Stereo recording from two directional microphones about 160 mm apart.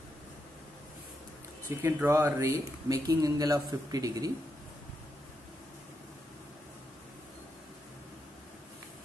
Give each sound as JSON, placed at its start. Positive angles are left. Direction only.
{"t": 1.8, "sound": "speech", "side_deg": -15}